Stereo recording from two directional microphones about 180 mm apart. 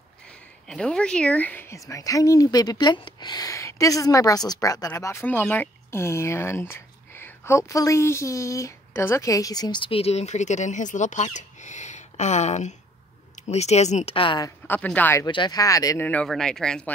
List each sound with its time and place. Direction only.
0.7 s speech: 5° left (ahead or behind); by 14.5 s 25° left (ahead or behind)
14.7 s speech: 10° left (ahead or behind)
15.2 s speech: 25° left (ahead or behind)
16.1 s speech: 5° left (ahead or behind)